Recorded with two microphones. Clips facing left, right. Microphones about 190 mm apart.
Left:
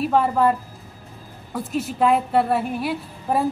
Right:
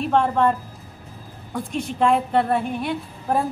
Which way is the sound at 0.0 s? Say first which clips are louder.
Left 1 dB; 5° left (ahead or behind).